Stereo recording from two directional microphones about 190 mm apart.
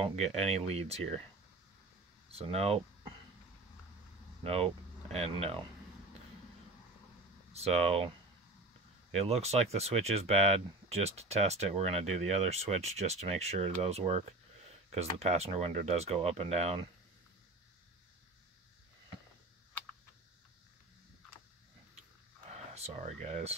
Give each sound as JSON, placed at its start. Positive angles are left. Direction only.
{"t": 0.0, "sound": "speech", "side_deg": -35}
{"t": 2.3, "sound": "speech", "side_deg": -30}
{"t": 4.4, "sound": "speech", "side_deg": -30}
{"t": 7.5, "sound": "speech", "side_deg": -35}
{"t": 9.1, "sound": "speech", "side_deg": -35}
{"t": 22.8, "sound": "speech", "side_deg": -35}